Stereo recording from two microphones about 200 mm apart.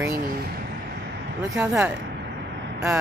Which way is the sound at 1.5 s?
15° right (ahead or behind).